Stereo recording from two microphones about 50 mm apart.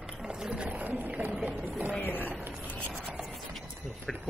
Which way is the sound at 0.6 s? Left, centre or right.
Right.